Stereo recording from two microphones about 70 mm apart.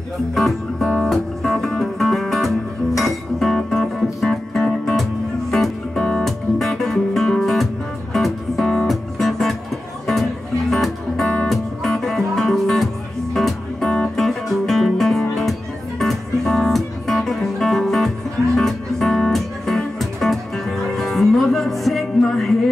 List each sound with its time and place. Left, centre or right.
0.3 s music: centre
10.7 s music: centre